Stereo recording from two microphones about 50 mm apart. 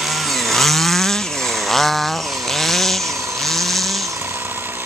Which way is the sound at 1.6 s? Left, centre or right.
Centre.